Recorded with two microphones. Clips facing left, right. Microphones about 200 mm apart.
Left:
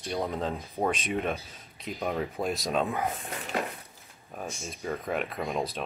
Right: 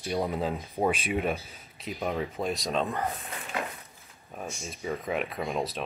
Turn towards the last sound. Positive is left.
turn(degrees=0)  # may be behind; listen again after turning